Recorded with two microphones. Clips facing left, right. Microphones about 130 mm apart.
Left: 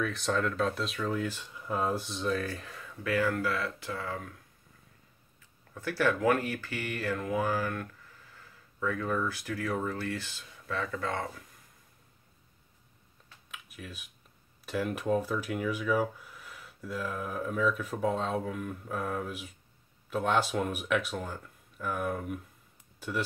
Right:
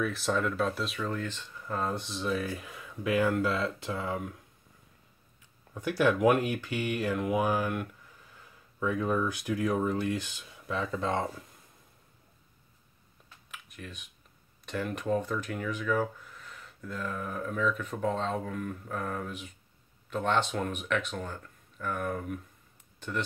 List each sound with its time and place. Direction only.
0.0 s speech: 5° right (ahead or behind); by 4.4 s 20° right (ahead or behind)
5.8 s speech: 15° right (ahead or behind)
13.5 s computer keyboard: 5° left (ahead or behind)
14.7 s speech: 5° left (ahead or behind)
22.9 s a sound: 5° left (ahead or behind)